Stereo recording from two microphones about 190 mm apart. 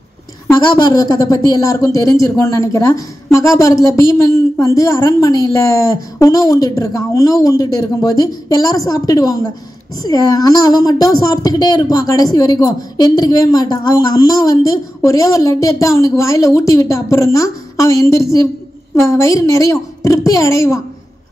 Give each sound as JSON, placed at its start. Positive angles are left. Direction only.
{"t": 0.5, "sound": "a woman's voice", "side_deg": 20}